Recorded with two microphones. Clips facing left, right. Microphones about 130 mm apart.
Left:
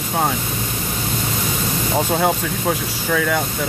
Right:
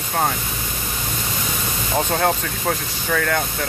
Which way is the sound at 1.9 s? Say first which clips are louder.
Left 1 dB; 5° left (ahead or behind).